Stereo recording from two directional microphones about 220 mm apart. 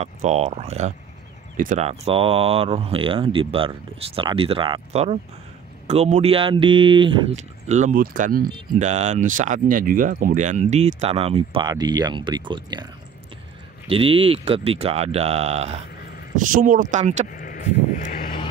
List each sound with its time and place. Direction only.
0.0 s speech: 30° right (ahead or behind)
13.8 s speech: 25° right (ahead or behind)
17.3 s vehicle: 40° left (ahead or behind)
17.9 s a sound: 40° left (ahead or behind)